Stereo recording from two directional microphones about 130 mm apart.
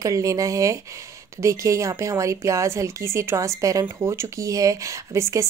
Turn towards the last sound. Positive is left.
turn(degrees=-20)  # may be behind; listen again after turning